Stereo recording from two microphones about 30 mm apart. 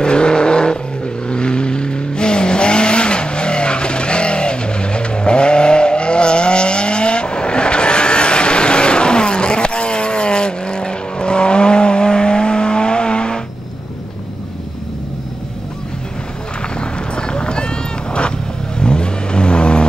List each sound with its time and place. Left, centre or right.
0.0 s vehicle: left
16.8 s run: left
18.8 s vehicle: left